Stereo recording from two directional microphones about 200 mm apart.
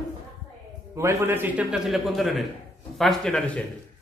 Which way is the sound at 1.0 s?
15° right (ahead or behind).